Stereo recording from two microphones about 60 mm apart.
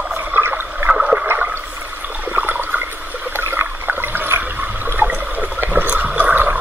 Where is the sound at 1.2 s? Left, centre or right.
Right.